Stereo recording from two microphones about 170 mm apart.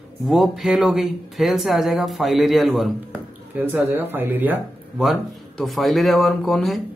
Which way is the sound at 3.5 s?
10° right (ahead or behind).